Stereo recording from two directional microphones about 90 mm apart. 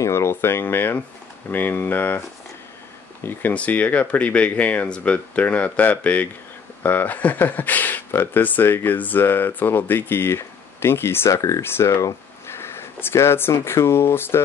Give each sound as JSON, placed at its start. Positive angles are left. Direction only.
{"t": 0.0, "sound": "speech", "side_deg": 30}
{"t": 3.3, "sound": "speech", "side_deg": 20}